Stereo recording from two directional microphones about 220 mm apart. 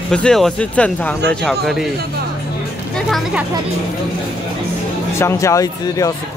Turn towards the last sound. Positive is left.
turn(degrees=15)  # may be behind; listen again after turning